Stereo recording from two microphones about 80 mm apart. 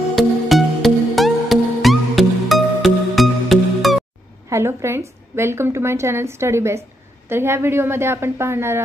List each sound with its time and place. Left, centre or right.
0.1 s music: centre
4.5 s a woman's voice: right